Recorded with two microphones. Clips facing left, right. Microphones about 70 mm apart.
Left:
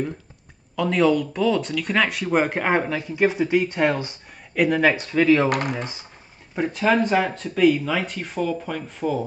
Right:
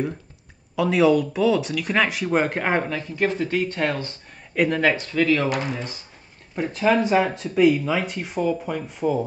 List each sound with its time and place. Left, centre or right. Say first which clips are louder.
0.7 s speech: right 1 dB; centre
5.5 s speech: left 2 dB; left
6.5 s speech: even; centre